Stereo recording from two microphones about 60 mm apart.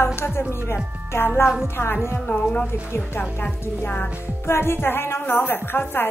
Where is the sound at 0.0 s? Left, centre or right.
Left.